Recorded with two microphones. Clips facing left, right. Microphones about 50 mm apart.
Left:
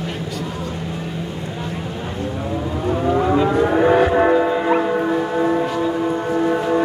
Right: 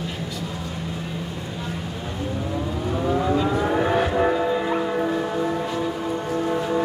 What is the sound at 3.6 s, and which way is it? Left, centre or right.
Vehicle, centre.